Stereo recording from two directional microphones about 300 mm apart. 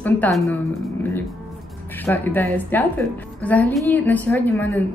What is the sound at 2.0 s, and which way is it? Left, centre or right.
A woman's voice, centre.